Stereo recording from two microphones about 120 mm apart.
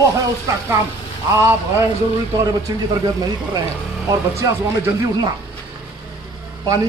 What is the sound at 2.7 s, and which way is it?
Speech, 30° right (ahead or behind).